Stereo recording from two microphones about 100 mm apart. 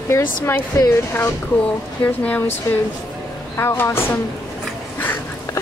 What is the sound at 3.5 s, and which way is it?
Speech, 25° left (ahead or behind).